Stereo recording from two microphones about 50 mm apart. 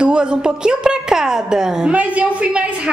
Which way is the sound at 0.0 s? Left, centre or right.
Centre.